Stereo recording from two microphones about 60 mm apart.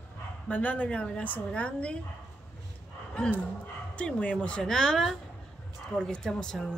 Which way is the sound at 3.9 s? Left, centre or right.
Left.